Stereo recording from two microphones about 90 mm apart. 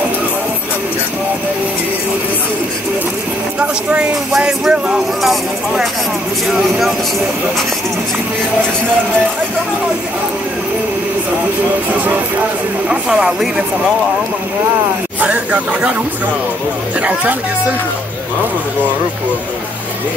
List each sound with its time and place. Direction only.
3.5 s a sound: 15° right (ahead or behind)
12.8 s speech: 10° right (ahead or behind)
15.1 s speech: 15° right (ahead or behind)
17.0 s speech: 15° right (ahead or behind)